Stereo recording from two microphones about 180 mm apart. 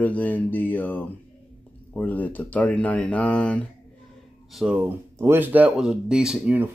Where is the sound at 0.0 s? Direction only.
10° left (ahead or behind).